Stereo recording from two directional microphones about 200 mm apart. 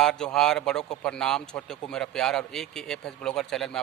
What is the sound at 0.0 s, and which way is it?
A man's voice, 5° left (ahead or behind).